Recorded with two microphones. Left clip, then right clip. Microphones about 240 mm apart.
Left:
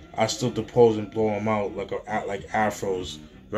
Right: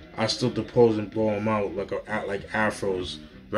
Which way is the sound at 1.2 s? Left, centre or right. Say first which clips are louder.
Left 1 dB; centre.